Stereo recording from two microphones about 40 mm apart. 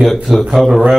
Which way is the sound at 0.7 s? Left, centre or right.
Centre.